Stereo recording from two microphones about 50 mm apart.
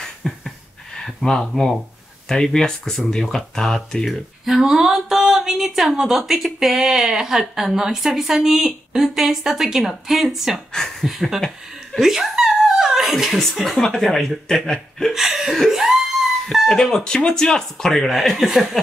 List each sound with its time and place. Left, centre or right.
0.2 s a sound: centre
0.9 s speech: centre
4.1 s a sound: centre
5.9 s speech: centre
10.7 s speech: centre
11.1 s speech: centre
12.0 s chuckle: centre
13.6 s speech: centre
15.1 s speech: centre
15.7 s a sound: centre
16.6 s speech: centre